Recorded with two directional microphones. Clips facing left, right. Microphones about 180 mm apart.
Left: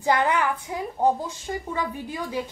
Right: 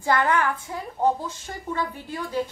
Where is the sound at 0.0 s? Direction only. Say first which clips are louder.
Even; 15° left (ahead or behind).